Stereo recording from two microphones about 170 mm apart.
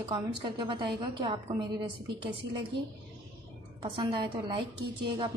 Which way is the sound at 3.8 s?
30° right (ahead or behind).